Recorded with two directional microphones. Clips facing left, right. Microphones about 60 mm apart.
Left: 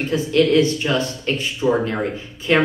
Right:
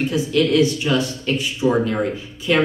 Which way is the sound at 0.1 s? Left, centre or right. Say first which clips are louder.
Left 5 dB; left.